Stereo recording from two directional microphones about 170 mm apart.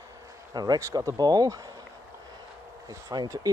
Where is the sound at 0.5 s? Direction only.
25° right (ahead or behind).